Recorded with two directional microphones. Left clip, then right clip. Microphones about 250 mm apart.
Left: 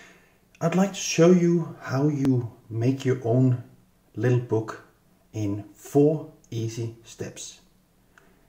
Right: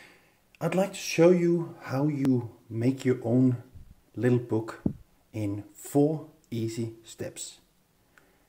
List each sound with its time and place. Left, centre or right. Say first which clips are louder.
0.6 s speech: left 2 dB; right